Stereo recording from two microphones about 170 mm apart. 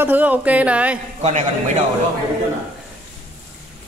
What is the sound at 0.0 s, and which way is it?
Speech, 10° right (ahead or behind).